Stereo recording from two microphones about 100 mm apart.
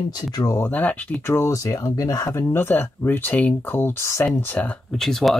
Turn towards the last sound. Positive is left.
turn(degrees=0)  # may be behind; listen again after turning